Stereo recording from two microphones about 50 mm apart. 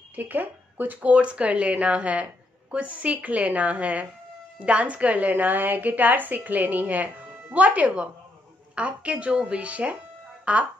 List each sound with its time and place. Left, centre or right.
0.1 s speech: right
1.1 s a woman's voice: right